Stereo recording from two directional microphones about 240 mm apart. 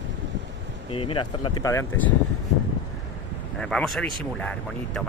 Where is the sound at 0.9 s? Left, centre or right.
Left.